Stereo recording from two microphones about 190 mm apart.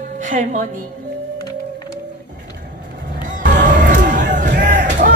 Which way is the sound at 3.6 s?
40° right (ahead or behind).